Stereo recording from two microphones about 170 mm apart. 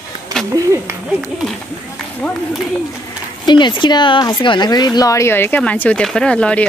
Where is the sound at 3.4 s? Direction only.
25° left (ahead or behind); by 6.6 s 5° left (ahead or behind).